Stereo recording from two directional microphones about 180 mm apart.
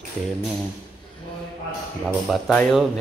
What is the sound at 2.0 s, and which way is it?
Speech, centre (ahead or behind).